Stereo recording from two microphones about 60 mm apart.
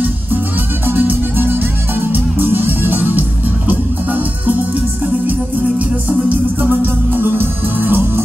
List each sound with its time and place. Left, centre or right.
0.8 s music: right